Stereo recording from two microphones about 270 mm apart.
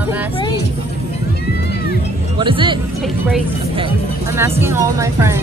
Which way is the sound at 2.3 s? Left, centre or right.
Centre.